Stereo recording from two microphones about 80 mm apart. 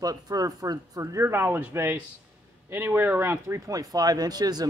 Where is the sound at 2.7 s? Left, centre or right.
Right.